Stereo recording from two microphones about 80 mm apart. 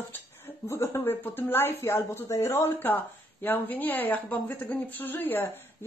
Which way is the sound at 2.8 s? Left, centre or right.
Left.